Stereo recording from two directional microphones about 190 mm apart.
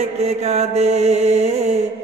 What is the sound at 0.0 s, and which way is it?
Mantra, 35° right (ahead or behind).